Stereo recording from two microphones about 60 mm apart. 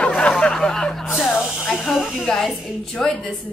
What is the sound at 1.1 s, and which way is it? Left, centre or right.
Speech, centre.